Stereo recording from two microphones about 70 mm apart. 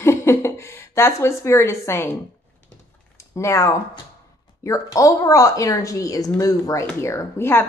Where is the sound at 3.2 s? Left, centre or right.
Left.